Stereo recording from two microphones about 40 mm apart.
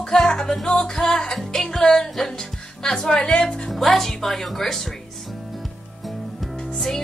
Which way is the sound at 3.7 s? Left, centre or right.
Centre.